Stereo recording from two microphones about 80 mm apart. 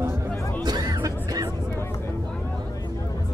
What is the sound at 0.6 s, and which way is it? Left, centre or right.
Music, right.